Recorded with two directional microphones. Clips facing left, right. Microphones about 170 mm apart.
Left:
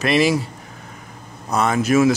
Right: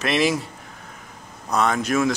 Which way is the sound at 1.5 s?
Centre (ahead or behind).